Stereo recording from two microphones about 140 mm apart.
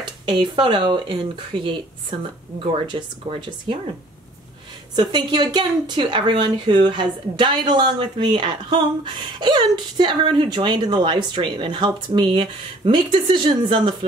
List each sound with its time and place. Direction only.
0.0 s speech: 35° right (ahead or behind)
4.9 s speech: 30° right (ahead or behind)